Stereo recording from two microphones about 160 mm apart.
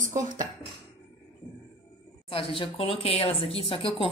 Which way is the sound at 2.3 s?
35° left (ahead or behind).